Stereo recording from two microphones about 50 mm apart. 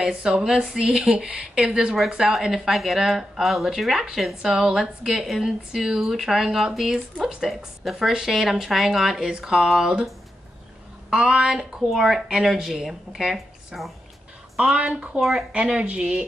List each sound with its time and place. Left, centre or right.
0.0 s speech: centre
11.1 s speech: centre
12.3 s speech: centre
15.1 s speech: centre
15.5 s speech: centre